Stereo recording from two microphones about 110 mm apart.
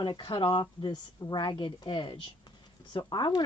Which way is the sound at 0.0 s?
45° left (ahead or behind).